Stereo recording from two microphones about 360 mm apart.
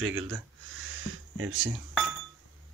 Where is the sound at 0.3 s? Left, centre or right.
Right.